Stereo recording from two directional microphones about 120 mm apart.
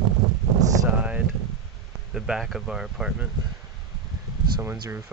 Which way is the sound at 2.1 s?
5° right (ahead or behind).